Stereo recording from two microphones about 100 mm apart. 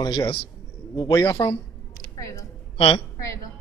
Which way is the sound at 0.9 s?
40° left (ahead or behind).